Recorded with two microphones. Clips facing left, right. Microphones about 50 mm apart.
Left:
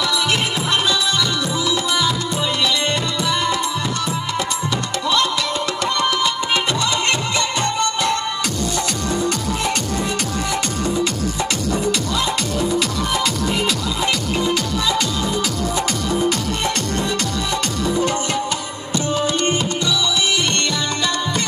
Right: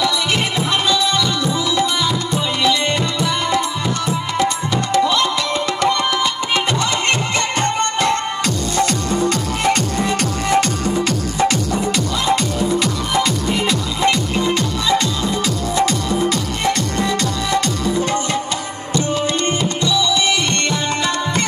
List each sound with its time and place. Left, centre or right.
2.6 s music: right
5.2 s music: right
13.6 s music: right
17.0 s music: right